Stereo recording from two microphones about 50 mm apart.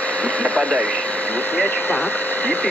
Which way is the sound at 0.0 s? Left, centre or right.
Left.